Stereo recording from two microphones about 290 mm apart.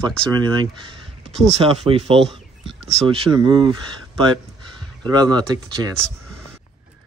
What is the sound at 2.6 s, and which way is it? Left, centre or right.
Speech, centre.